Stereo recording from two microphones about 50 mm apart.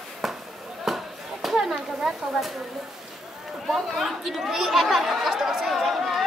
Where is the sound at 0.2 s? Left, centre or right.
Centre.